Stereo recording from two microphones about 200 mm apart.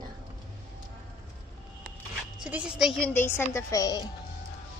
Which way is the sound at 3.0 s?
10° left (ahead or behind).